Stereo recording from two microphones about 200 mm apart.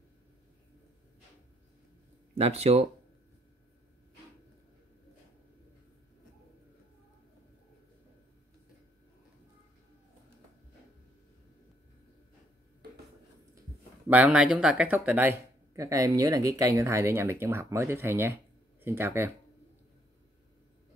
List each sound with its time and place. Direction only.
2.3 s speech: 30° right (ahead or behind)
14.0 s speech: 5° right (ahead or behind)